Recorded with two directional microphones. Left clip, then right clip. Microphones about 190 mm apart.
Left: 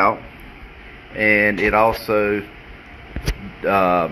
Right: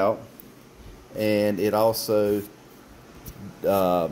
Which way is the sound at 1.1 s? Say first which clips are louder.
Left 7 dB; 25° right (ahead or behind).